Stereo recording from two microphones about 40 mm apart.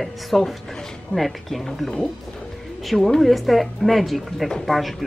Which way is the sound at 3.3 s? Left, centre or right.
Centre.